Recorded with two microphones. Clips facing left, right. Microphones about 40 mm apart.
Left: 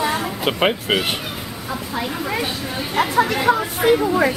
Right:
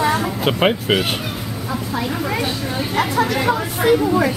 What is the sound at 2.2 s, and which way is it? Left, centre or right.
A woman's voice, centre.